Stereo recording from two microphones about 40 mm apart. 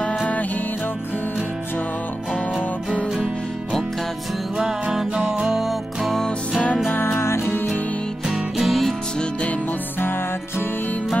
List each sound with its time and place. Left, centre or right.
0.2 s music: left
5.1 s music: right
5.5 s music: centre
7.2 s music: left
8.3 s music: centre